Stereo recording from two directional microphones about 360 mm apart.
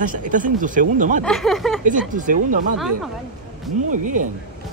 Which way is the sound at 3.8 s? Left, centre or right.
Right.